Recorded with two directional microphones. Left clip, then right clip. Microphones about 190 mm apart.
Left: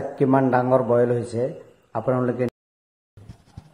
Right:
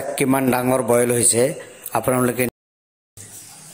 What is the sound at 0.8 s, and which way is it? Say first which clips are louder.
A man's voice: right 2 dB; 75° right (ahead or behind).